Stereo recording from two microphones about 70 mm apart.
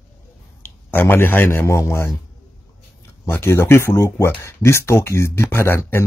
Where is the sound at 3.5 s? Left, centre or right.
Left.